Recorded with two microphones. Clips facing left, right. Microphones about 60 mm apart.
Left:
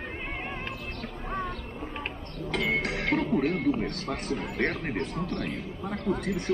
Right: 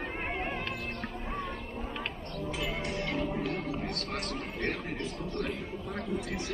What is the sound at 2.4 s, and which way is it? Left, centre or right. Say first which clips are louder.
Music: left 7 dB; left.